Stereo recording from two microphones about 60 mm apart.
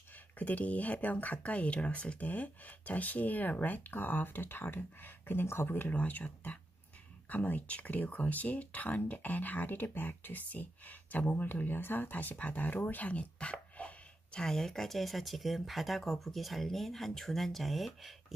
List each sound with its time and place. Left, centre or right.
0.4 s speech: left
14.4 s speech: centre